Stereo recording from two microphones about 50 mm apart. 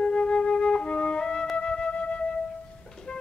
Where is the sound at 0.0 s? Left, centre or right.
Centre.